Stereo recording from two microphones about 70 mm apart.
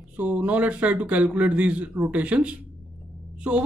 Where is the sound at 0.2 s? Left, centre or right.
Right.